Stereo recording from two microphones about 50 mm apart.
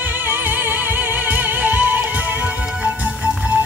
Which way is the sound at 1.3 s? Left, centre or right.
Right.